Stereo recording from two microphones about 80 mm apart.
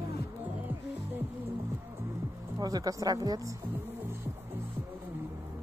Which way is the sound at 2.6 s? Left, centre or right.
Right.